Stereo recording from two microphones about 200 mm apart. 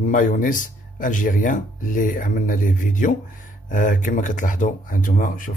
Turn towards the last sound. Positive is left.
turn(degrees=40)  # may be behind; listen again after turning